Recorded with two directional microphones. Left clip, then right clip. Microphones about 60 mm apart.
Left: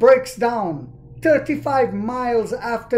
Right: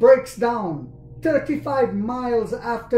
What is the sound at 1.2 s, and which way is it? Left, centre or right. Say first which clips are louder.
Speech: left 4 dB; left.